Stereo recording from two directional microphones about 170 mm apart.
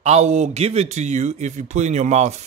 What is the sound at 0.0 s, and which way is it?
A man's voice, 40° right (ahead or behind).